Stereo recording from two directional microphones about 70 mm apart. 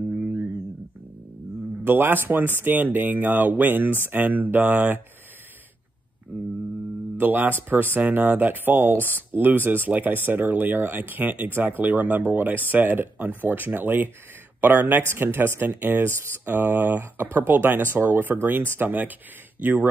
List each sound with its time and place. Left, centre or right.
0.2 s guitar: right
1.9 s speech: right
6.3 s a sound: right
7.2 s speech: right